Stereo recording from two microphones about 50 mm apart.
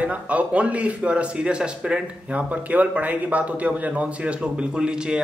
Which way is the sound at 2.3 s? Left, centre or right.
Right.